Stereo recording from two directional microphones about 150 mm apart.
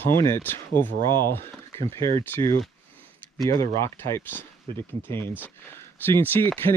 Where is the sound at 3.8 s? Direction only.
15° left (ahead or behind).